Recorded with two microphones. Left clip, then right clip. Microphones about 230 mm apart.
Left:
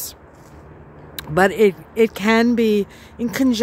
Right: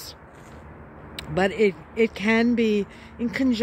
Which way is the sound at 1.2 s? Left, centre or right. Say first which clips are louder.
Left 7 dB; left.